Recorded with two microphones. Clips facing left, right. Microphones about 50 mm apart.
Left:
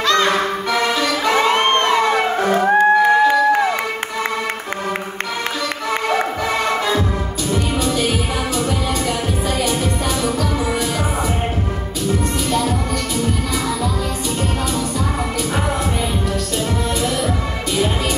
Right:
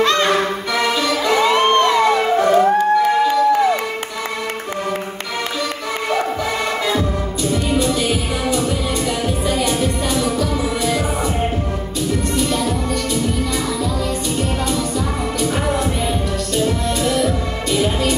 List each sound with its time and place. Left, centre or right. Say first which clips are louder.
0.0 s music: even; right
0.3 s music: even; left
2.8 s a sound: left 2 dB; left
6.1 s music: left 1 dB; left